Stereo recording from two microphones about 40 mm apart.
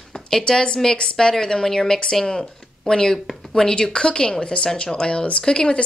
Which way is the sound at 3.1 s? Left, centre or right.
Centre.